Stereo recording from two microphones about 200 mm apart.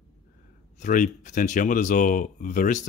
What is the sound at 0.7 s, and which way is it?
Speech, 40° left (ahead or behind).